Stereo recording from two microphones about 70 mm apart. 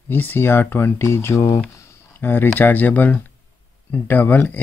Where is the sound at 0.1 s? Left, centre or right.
Left.